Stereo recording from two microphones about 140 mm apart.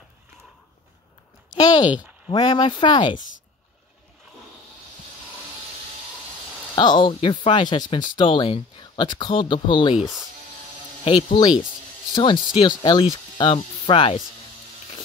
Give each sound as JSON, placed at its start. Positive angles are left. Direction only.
{"t": 1.6, "sound": "speech", "side_deg": 30}
{"t": 1.9, "sound": "speech", "side_deg": -10}
{"t": 2.3, "sound": "speech", "side_deg": 30}
{"t": 6.7, "sound": "speech", "side_deg": 30}
{"t": 9.9, "sound": "speech", "side_deg": 0}
{"t": 11.4, "sound": "speech", "side_deg": 30}